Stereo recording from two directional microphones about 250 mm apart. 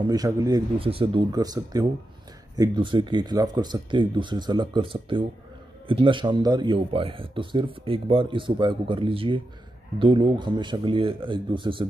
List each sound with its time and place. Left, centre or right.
0.0 s speech: centre